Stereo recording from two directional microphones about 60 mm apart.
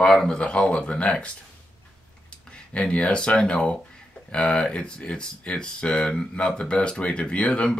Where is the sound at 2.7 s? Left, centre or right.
Centre.